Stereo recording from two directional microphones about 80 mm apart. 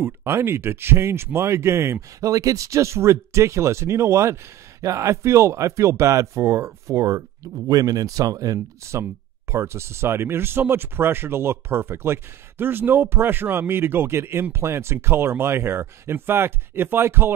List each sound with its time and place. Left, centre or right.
0.0 s speech: right
8.5 s speech: right